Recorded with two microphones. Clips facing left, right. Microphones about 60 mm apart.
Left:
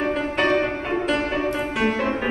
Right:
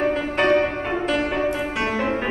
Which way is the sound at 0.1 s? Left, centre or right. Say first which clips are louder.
Right 2 dB; centre.